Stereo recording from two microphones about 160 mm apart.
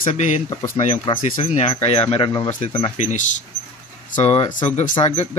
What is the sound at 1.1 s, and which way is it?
Speech, 30° left (ahead or behind).